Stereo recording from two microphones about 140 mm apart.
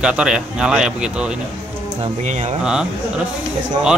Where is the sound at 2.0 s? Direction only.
55° right (ahead or behind).